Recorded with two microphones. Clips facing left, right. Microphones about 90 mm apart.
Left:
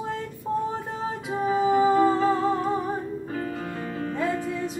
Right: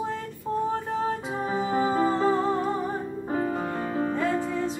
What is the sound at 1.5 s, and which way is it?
Music, centre (ahead or behind).